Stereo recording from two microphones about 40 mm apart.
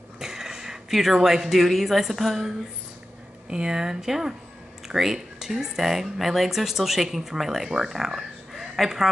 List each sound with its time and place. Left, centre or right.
0.2 s speech: centre
3.4 s speech: right; by 9.0 s centre